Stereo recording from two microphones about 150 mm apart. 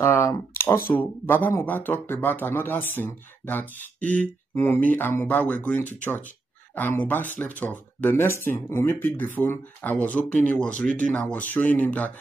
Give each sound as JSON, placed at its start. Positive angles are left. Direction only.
{"t": 0.0, "sound": "speech", "side_deg": 20}